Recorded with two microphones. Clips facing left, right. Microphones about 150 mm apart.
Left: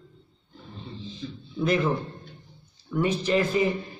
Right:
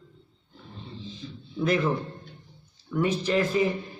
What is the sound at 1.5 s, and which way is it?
A man's voice, centre (ahead or behind).